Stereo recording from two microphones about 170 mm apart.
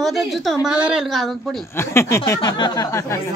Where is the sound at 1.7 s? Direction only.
15° left (ahead or behind).